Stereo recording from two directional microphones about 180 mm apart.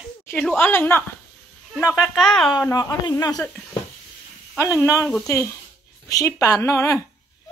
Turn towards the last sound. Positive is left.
turn(degrees=20)  # may be behind; listen again after turning